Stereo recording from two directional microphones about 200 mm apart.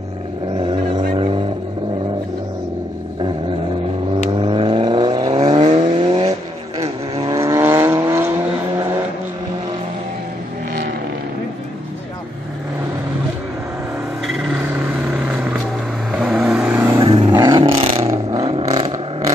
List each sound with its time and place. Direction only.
0.6 s vehicle: 25° right (ahead or behind)
4.3 s vehicle: 25° right (ahead or behind)
15.1 s vehicle: 5° right (ahead or behind)
17.0 s vehicle: 25° right (ahead or behind)
17.3 s a sound: 20° right (ahead or behind)
18.0 s vehicle: 15° right (ahead or behind)